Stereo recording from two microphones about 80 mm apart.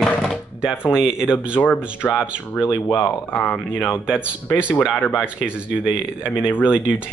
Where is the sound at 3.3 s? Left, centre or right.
Left.